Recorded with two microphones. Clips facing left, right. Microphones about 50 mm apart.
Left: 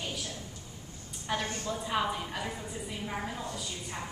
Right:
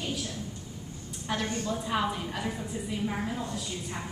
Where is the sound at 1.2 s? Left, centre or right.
Centre.